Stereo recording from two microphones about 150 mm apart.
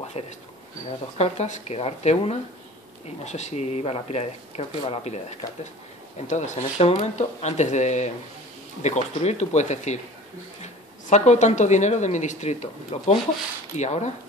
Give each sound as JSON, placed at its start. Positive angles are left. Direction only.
{"t": 0.2, "sound": "speech", "side_deg": 45}